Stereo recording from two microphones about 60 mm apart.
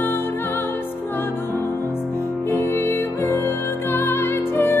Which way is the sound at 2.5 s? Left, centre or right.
Left.